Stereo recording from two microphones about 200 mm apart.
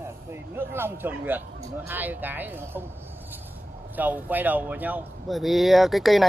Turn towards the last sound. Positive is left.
turn(degrees=0)  # may be behind; listen again after turning